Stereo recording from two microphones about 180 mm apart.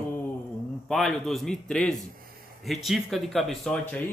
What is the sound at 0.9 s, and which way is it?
Speech, centre (ahead or behind).